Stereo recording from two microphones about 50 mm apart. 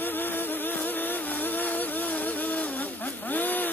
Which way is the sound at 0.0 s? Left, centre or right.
Left.